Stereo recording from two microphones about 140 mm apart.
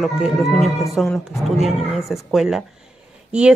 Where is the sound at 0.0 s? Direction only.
Centre (ahead or behind).